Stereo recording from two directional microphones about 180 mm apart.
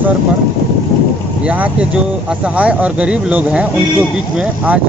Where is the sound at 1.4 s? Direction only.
5° right (ahead or behind).